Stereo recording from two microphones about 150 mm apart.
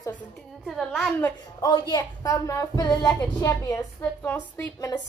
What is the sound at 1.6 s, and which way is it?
A woman's voice, 30° left (ahead or behind).